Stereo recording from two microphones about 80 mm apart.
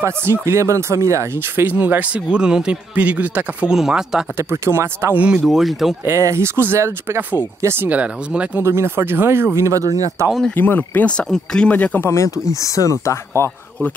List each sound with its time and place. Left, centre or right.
0.0 s speech: right
1.8 s speech: centre
3.7 s speech: centre
4.4 s speech: right
5.1 s speech: centre
5.4 s speech: centre
6.0 s speech: right; by 8.6 s centre
8.6 s speech: right
10.5 s speech: left; by 11.7 s centre
11.7 s speech: left
12.1 s speech: left